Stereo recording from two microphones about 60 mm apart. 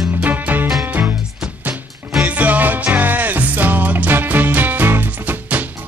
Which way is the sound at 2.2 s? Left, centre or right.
Right.